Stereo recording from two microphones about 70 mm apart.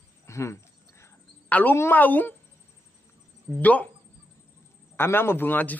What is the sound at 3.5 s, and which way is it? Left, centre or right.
Speech, left.